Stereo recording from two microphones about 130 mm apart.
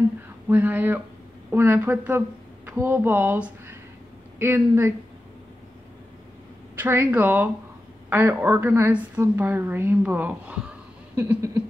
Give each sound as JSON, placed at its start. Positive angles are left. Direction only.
{"t": 0.5, "sound": "a woman's voice", "side_deg": -15}
{"t": 6.7, "sound": "a woman's voice", "side_deg": -20}